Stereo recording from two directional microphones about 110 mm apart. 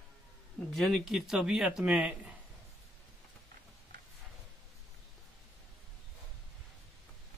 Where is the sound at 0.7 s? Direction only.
Centre (ahead or behind).